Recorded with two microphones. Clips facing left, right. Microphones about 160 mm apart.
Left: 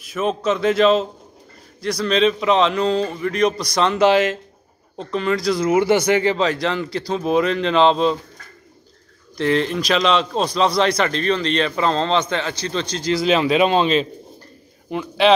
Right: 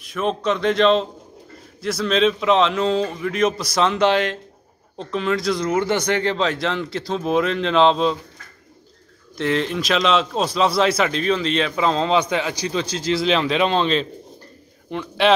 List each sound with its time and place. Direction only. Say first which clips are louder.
0.0 s a man's voice: left 1 dB; 5° left (ahead or behind)
9.4 s a man's voice: left 2 dB; centre (ahead or behind)